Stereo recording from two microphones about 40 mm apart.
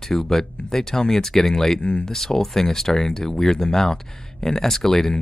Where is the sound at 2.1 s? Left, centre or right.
Centre.